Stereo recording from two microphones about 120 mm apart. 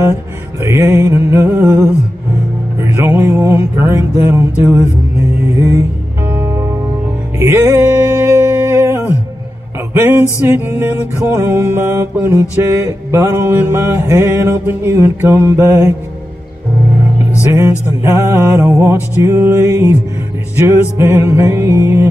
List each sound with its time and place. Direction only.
0.6 s mantra: 20° right (ahead or behind)
5.6 s music: 25° right (ahead or behind)
11.3 s mantra: 20° right (ahead or behind)
17.5 s mantra: 20° right (ahead or behind)